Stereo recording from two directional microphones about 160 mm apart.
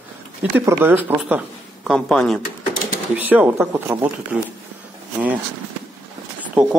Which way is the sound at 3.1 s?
10° right (ahead or behind).